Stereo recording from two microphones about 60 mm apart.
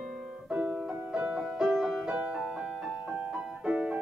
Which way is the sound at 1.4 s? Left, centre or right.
Centre.